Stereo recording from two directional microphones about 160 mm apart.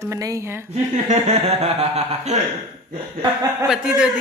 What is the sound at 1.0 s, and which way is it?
Speech, 40° right (ahead or behind).